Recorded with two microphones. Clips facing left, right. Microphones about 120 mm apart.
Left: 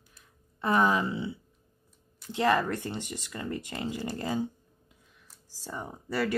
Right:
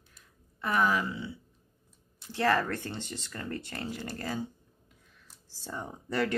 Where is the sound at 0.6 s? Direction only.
25° left (ahead or behind).